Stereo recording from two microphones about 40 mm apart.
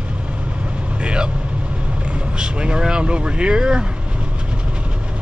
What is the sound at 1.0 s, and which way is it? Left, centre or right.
Vehicle, right.